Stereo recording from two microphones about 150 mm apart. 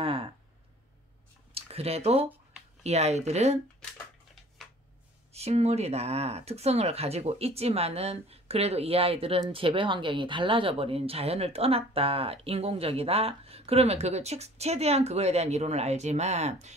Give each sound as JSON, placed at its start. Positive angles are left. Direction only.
{"t": 0.0, "sound": "a sound", "side_deg": -35}
{"t": 1.5, "sound": "speech", "side_deg": -40}
{"t": 5.3, "sound": "speech", "side_deg": -45}